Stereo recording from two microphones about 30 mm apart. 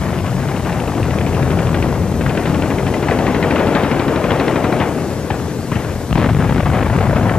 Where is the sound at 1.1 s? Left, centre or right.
Left.